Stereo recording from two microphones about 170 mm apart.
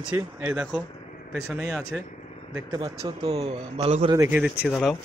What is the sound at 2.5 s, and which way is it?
Speech, 20° right (ahead or behind).